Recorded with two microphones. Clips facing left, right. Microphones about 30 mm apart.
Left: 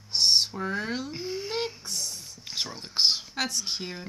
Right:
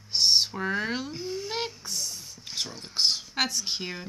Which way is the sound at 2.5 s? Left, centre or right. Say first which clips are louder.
Left 1 dB; centre.